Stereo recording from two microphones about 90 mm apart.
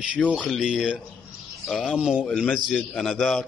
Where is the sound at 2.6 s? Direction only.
Centre (ahead or behind).